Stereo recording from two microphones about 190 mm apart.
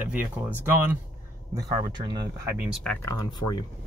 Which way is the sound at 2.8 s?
15° left (ahead or behind).